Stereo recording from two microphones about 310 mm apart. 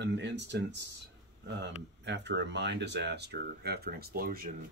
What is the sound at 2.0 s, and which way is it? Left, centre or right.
Speech, right.